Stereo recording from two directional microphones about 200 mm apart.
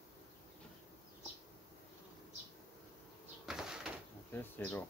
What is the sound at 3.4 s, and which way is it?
Bird, centre (ahead or behind).